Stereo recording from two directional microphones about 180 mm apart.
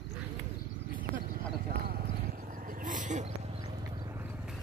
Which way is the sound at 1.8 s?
55° right (ahead or behind).